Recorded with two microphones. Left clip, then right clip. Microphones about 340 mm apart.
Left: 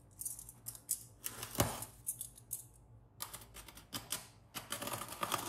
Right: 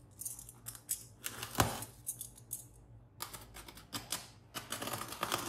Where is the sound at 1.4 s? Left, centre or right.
Centre.